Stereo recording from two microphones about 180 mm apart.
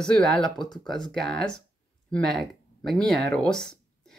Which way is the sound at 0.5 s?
25° left (ahead or behind).